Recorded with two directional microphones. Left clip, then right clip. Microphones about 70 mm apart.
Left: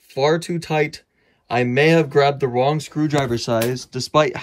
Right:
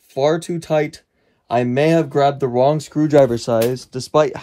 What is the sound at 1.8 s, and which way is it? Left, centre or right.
Speech, right.